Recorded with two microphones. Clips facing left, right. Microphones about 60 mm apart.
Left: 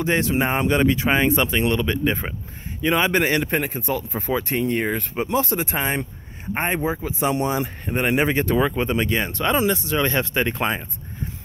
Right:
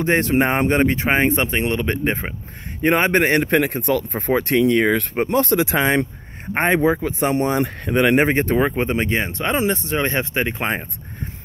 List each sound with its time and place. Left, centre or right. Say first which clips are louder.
0.0 s a man's voice: right 3 dB; right
0.7 s a man's voice: right 1 dB; right
3.5 s speech: right 6 dB; right
8.2 s speech: right 2 dB; right; by 10.7 s centre